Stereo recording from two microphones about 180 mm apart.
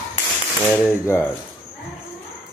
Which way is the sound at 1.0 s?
10° left (ahead or behind).